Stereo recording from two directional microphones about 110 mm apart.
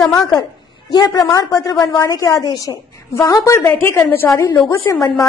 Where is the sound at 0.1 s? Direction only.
35° left (ahead or behind).